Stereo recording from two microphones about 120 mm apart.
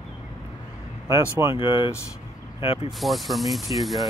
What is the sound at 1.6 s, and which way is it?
Speech, 45° left (ahead or behind).